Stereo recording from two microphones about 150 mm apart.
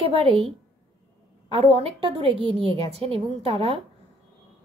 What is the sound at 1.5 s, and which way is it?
A woman's voice, 40° right (ahead or behind).